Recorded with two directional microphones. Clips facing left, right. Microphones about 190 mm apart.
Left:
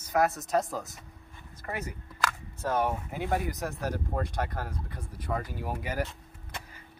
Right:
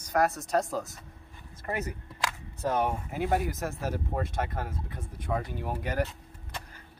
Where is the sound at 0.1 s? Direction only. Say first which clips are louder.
Even; centre (ahead or behind).